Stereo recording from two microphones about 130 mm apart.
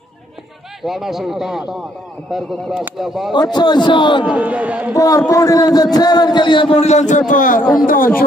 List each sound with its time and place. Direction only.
0.8 s speech: 5° right (ahead or behind)
3.5 s a man's voice: 35° left (ahead or behind)
4.3 s a man's voice: 10° right (ahead or behind)
4.9 s a man's voice: 25° left (ahead or behind); by 8.3 s 90° left